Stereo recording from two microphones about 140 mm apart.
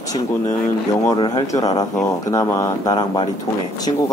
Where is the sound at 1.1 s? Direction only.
30° left (ahead or behind).